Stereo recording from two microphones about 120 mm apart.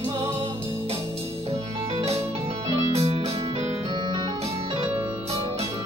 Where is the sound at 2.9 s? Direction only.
55° right (ahead or behind).